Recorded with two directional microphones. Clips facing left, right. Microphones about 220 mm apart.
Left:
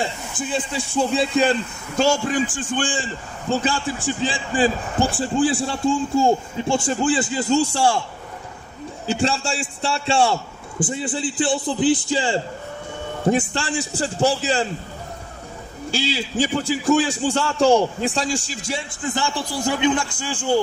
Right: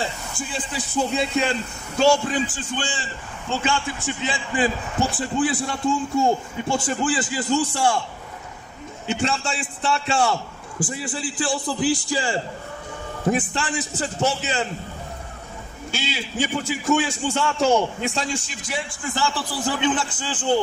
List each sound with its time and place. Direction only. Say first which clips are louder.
0.5 s speech: left 7 dB; 30° left (ahead or behind)
9.0 s a man's voice: left 2 dB; 30° left (ahead or behind)
15.9 s a man's voice: left 5 dB; 30° left (ahead or behind); by 20.5 s 10° left (ahead or behind)